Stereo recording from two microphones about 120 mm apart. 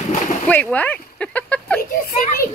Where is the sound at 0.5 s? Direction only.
15° left (ahead or behind).